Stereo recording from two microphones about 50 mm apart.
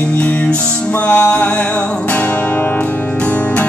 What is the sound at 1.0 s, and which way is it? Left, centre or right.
Music, left.